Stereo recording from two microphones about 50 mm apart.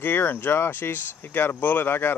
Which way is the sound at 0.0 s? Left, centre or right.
Left.